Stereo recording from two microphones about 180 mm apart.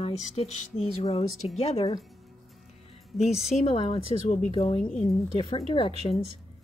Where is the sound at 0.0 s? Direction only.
35° left (ahead or behind).